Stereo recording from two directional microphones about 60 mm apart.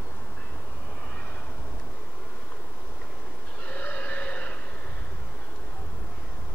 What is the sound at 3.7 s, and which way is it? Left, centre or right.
Neigh, left.